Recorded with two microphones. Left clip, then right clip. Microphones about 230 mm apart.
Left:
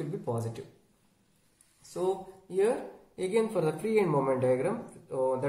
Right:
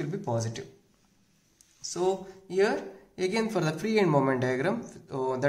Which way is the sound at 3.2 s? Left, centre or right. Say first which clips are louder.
Even; right.